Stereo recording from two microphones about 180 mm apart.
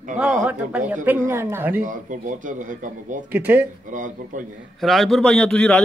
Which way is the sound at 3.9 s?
45° right (ahead or behind).